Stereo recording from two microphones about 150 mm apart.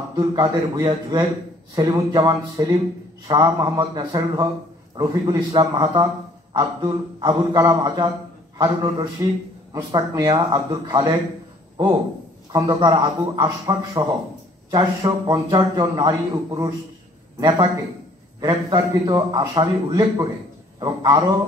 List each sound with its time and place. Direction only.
0.1 s a man's voice: 25° right (ahead or behind)
12.5 s a man's voice: 25° right (ahead or behind)